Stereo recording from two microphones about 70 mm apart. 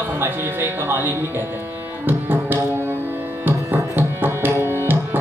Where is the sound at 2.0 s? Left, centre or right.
Right.